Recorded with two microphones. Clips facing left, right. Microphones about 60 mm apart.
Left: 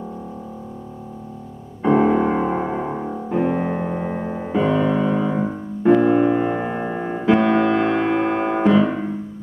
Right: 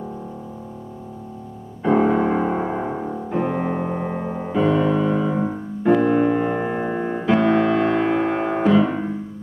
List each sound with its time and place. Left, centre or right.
1.8 s music: centre
7.6 s music: left
8.3 s music: centre